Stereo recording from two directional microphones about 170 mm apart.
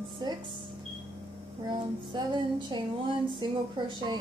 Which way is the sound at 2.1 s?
25° right (ahead or behind).